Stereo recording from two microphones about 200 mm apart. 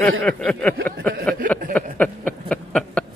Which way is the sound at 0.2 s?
5° left (ahead or behind).